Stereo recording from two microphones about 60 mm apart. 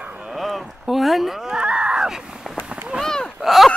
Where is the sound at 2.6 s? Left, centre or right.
Right.